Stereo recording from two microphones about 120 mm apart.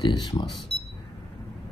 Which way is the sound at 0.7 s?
55° left (ahead or behind).